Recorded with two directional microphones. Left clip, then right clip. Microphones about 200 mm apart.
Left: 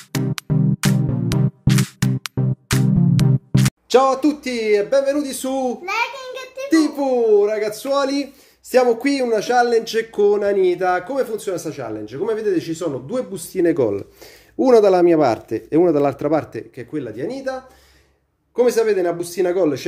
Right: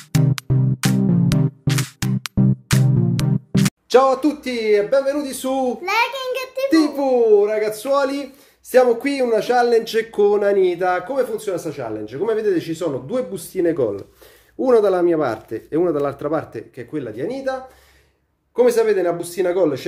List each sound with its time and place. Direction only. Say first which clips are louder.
0.1 s music: right 1 dB; centre (ahead or behind)
4.0 s speech: even; 15° left (ahead or behind)
5.9 s a sound: right 3 dB; 35° right (ahead or behind)
6.7 s speech: even; 10° left (ahead or behind); by 16.6 s 25° left (ahead or behind)
16.7 s speech: right 1 dB; 10° left (ahead or behind)
18.6 s speech: right 1 dB; 15° left (ahead or behind)